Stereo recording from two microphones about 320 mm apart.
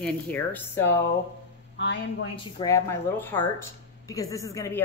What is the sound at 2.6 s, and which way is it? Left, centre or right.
Speech, centre.